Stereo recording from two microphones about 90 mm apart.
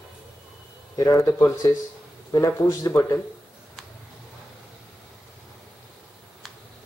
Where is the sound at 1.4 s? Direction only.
45° left (ahead or behind).